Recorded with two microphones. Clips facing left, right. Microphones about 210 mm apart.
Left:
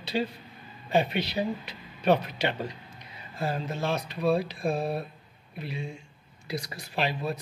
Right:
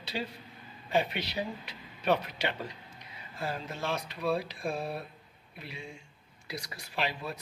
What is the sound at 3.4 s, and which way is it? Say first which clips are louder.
Speech: left 5 dB; 35° left (ahead or behind).